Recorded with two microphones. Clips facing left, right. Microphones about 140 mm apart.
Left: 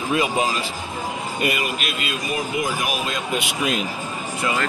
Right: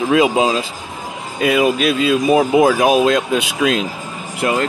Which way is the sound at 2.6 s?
90° right.